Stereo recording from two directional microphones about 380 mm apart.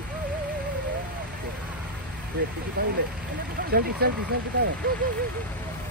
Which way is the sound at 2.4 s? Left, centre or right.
Right.